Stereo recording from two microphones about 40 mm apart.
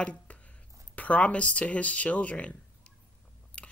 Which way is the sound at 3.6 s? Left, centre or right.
Left.